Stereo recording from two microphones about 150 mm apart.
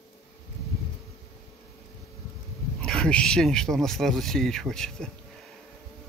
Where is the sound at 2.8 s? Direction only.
5° left (ahead or behind).